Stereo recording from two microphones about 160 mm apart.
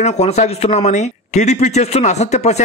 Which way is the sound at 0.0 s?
45° left (ahead or behind).